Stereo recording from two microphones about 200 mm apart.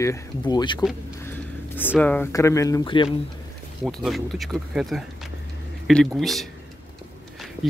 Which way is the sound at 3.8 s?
Centre (ahead or behind).